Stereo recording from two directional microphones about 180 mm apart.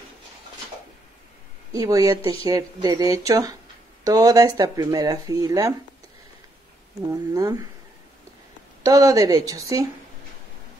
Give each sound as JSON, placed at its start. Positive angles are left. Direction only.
{"t": 1.7, "sound": "speech", "side_deg": -20}
{"t": 7.1, "sound": "speech", "side_deg": -20}
{"t": 8.8, "sound": "speech", "side_deg": -20}